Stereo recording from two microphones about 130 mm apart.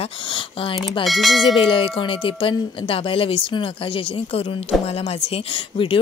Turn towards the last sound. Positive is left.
turn(degrees=45)  # may be behind; listen again after turning